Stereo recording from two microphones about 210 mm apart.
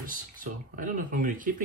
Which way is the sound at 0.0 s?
40° right (ahead or behind).